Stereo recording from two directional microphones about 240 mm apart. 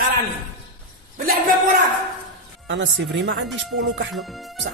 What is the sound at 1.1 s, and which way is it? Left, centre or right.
Speech, right.